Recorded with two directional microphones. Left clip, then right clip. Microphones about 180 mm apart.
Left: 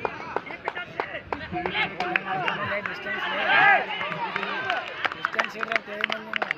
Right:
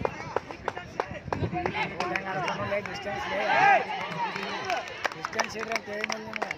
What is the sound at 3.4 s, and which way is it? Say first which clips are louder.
Speech: left 3 dB; 55° right (ahead or behind).